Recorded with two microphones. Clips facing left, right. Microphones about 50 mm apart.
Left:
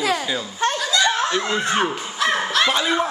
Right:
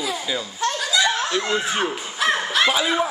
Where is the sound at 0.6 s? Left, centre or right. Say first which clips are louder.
Left 3 dB; left.